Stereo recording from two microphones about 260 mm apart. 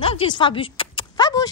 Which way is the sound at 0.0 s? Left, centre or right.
Left.